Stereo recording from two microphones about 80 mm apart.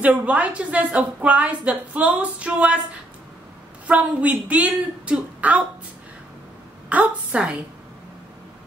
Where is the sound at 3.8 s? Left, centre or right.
Centre.